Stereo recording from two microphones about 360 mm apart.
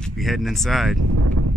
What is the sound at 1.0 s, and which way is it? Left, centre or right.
Speech, right.